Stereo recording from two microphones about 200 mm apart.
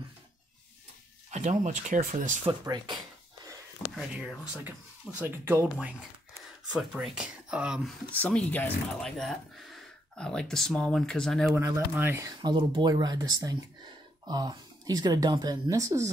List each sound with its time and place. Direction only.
1.3 s speech: 35° right (ahead or behind)
2.6 s speech: 20° right (ahead or behind)
3.9 s speech: centre (ahead or behind)
11.5 s speech: 15° right (ahead or behind)
12.4 s speech: 20° right (ahead or behind)